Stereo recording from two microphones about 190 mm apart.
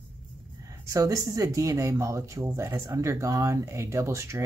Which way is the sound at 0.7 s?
15° right (ahead or behind).